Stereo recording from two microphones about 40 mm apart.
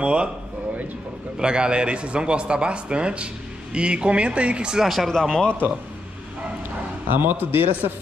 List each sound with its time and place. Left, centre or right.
0.0 s speech: right
1.4 s speech: right
4.8 s speech: centre
5.1 s a man's voice: centre
7.1 s speech: right